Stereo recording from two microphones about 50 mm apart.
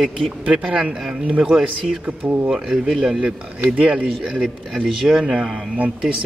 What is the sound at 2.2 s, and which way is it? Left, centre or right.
Speech, right.